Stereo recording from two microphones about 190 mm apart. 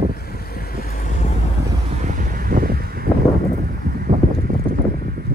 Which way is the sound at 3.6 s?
50° right (ahead or behind).